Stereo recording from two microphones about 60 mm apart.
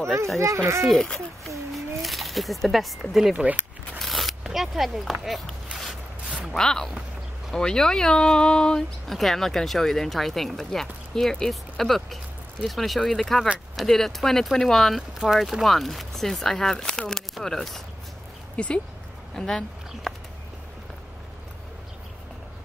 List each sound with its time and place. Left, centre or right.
0.6 s speech: right
2.0 s speech: centre
4.0 s a sound: centre
4.5 s speech: centre
6.5 s speech: centre
9.0 s speech: centre